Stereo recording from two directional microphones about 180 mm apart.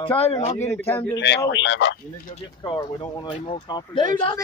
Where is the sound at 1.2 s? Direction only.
80° left.